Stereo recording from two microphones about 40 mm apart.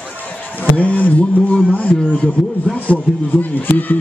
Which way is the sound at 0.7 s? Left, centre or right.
Left.